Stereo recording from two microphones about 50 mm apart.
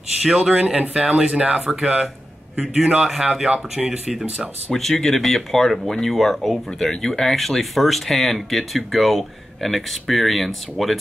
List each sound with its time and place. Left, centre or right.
0.2 s speech: centre
0.6 s a man's voice: right
0.9 s speech: centre
1.2 s a man's voice: centre
4.1 s speech: centre
4.7 s speech: centre